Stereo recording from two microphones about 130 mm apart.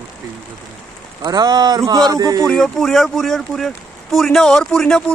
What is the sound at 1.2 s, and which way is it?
Speech, 30° right (ahead or behind).